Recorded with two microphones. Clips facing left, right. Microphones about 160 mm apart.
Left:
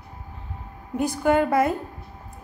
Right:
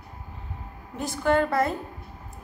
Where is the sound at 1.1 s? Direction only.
15° left (ahead or behind).